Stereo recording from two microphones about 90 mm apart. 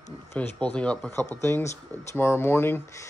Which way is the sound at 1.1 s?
25° left (ahead or behind).